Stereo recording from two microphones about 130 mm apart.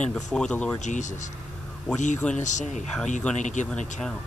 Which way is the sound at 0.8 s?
70° left (ahead or behind).